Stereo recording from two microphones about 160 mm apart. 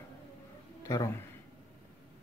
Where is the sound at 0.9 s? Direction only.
15° left (ahead or behind).